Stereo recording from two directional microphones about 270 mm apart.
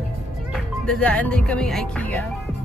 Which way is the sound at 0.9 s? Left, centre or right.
Centre.